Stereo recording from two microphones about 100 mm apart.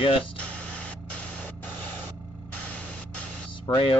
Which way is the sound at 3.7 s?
50° left (ahead or behind).